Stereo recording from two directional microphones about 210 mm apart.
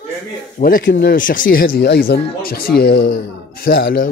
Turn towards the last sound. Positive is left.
turn(degrees=45)  # may be behind; listen again after turning